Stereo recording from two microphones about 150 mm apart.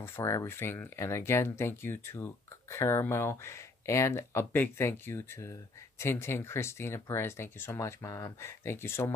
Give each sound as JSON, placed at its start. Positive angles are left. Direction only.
{"t": 0.0, "sound": "speech", "side_deg": 15}